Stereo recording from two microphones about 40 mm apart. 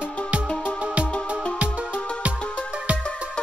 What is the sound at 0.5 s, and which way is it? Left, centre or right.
Music, left.